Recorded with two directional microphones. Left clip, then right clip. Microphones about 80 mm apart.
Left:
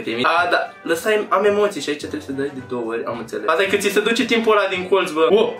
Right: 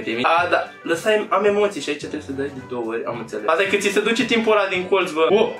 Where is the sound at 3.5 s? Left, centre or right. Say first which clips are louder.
Left 1 dB; left.